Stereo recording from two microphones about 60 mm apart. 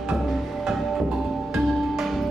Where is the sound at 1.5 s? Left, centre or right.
Centre.